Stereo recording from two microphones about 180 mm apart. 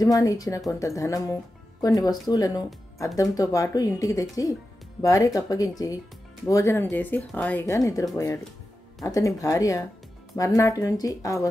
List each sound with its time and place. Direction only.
0.0 s speech: 20° left (ahead or behind)